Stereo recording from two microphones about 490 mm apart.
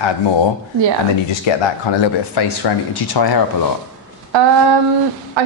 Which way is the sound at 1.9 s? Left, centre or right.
Left.